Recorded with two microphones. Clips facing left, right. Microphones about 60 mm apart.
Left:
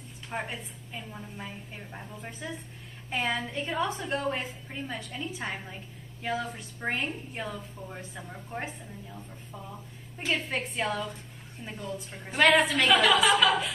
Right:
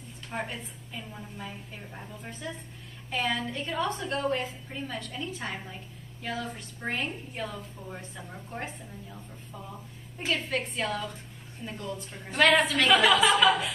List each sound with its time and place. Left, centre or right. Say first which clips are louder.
0.3 s a woman's voice: even; centre
3.1 s a woman's voice: even; centre
10.5 s a woman's voice: even; left
11.6 s a woman's voice: right 1 dB; centre